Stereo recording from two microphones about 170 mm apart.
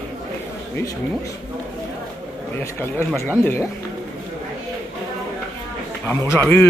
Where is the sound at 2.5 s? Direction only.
10° left (ahead or behind).